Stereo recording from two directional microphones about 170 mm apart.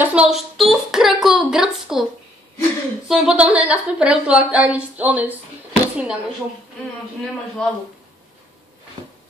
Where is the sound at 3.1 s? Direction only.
5° right (ahead or behind).